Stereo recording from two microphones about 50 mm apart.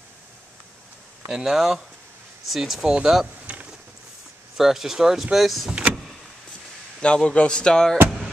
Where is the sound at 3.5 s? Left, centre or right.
Right.